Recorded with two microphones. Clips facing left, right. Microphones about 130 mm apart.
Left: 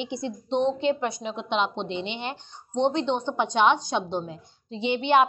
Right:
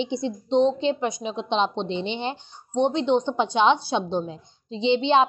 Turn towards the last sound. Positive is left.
turn(degrees=-20)  # may be behind; listen again after turning